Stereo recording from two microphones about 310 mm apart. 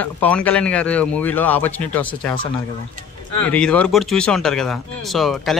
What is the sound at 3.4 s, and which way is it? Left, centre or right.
Speech, centre.